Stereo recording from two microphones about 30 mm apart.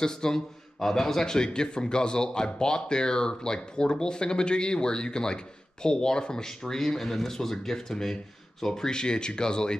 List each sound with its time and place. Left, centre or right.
0.0 s a man's voice: left
6.6 s speech: centre